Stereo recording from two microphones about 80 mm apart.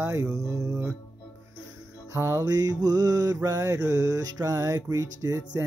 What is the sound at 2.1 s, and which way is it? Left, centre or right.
Mantra, right.